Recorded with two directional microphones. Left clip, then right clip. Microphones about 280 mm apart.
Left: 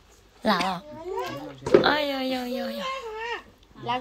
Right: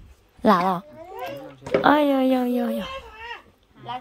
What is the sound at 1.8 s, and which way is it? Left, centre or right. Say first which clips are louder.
Speech: right 6 dB; right.